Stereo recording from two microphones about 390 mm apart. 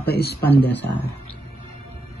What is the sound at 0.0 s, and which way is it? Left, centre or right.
Speech, left.